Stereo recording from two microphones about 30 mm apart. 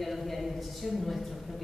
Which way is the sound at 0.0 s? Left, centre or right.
Centre.